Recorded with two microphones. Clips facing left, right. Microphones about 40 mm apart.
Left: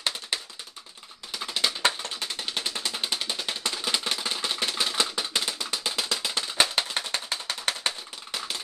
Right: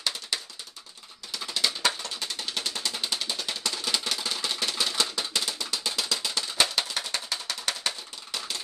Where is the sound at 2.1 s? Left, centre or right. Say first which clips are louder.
Left 1 dB; centre.